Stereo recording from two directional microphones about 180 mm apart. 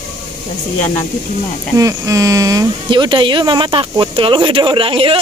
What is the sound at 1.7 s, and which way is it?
Speech, 15° right (ahead or behind).